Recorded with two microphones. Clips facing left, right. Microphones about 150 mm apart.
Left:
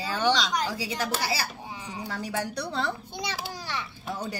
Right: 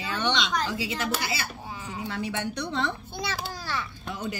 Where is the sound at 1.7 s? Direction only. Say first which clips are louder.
Right 1 dB; 15° left (ahead or behind).